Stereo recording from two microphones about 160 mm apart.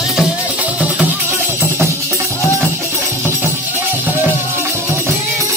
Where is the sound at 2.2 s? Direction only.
20° left (ahead or behind).